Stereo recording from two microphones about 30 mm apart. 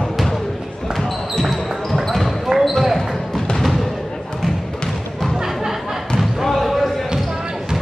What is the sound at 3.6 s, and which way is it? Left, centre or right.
Thump, centre.